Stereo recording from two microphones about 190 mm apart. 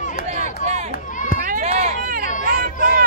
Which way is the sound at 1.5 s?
40° right (ahead or behind).